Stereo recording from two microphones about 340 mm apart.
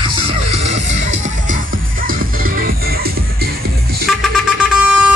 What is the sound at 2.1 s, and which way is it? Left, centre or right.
Music, right.